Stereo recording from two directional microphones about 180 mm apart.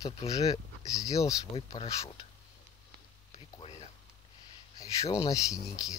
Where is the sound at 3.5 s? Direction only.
35° left (ahead or behind).